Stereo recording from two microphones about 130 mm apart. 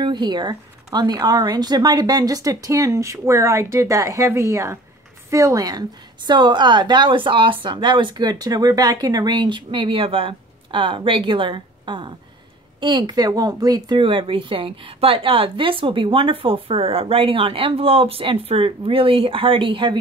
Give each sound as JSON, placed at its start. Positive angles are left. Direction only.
{"t": 0.0, "sound": "a woman's voice", "side_deg": -35}